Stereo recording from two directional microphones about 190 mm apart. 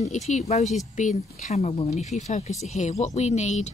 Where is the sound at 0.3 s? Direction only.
35° left (ahead or behind).